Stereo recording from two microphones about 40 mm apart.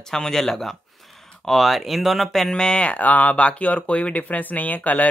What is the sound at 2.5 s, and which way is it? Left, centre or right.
Speech, left.